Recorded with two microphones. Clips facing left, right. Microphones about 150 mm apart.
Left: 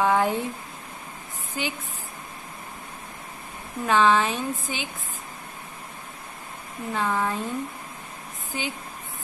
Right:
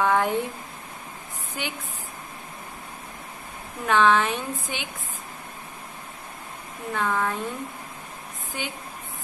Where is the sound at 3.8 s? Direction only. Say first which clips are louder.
Even; 10° left (ahead or behind).